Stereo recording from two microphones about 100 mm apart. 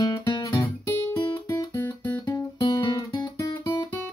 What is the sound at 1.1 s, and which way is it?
Guitar, 20° left (ahead or behind).